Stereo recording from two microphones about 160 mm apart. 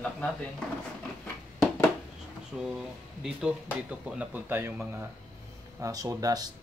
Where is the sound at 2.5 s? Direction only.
Centre (ahead or behind).